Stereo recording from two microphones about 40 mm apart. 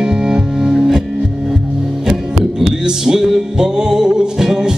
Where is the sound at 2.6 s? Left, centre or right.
Centre.